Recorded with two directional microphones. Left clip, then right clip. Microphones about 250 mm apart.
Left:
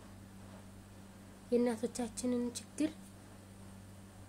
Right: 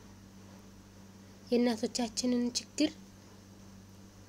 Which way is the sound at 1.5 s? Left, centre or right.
Right.